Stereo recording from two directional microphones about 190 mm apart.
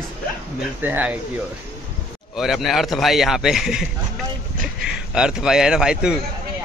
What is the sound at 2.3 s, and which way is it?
A man's voice, centre (ahead or behind).